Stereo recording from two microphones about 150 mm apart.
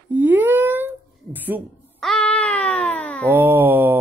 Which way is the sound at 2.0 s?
5° left (ahead or behind).